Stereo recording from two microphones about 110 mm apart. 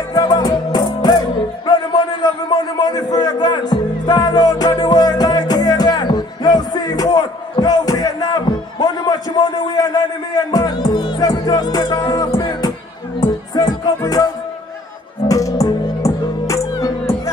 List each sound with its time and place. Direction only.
0.1 s music: 40° left (ahead or behind)
2.5 s music: 35° left (ahead or behind)